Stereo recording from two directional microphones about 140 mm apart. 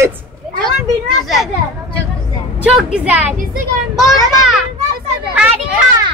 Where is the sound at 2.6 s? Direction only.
5° right (ahead or behind).